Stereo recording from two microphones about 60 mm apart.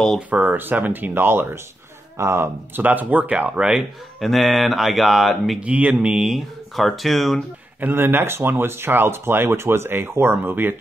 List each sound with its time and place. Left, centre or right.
0.3 s speech: right
2.8 s speech: right
4.2 s speech: centre
5.6 s speech: right
5.9 s speech: centre
6.3 s speech: centre
7.8 s speech: right